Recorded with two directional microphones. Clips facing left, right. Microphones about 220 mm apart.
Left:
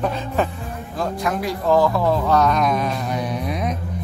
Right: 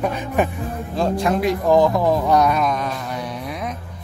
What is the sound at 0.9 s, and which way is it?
Speech, 30° right (ahead or behind).